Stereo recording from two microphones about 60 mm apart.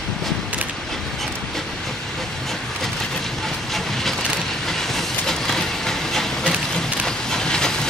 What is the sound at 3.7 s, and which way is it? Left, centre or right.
Vehicle, centre.